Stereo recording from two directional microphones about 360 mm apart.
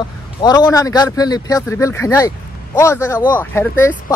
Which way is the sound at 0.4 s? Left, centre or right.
Centre.